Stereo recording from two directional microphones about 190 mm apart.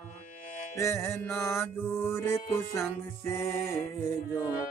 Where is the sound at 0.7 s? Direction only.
15° left (ahead or behind).